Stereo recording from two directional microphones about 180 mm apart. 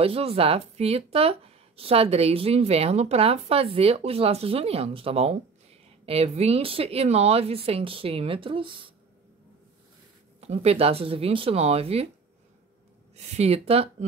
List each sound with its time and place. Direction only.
0.0 s speech: 30° right (ahead or behind)
10.4 s speech: 35° right (ahead or behind)
13.1 s speech: 35° right (ahead or behind)